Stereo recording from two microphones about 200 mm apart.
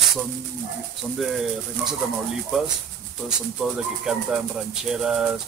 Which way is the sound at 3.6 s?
Centre (ahead or behind).